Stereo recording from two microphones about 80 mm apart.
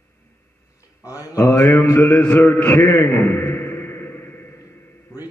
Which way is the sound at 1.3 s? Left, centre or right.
Left.